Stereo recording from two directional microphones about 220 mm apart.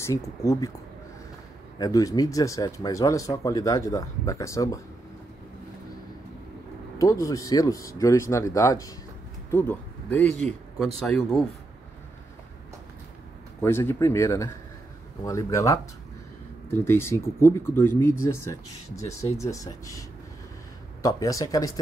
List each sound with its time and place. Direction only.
0.0 s speech: 15° left (ahead or behind)
1.8 s speech: 15° left (ahead or behind)
7.0 s speech: 15° left (ahead or behind)
13.6 s speech: 10° left (ahead or behind)
16.8 s speech: 10° left (ahead or behind)